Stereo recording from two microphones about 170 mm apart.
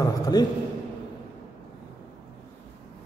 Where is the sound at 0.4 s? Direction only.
25° left (ahead or behind).